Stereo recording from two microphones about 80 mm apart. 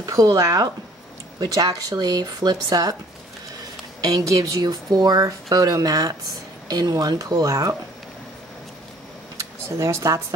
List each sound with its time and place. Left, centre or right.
0.0 s speech: right
4.0 s speech: right
9.4 s speech: right